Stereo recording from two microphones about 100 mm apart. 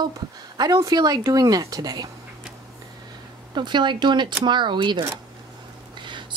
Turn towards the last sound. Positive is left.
turn(degrees=-50)  # may be behind; listen again after turning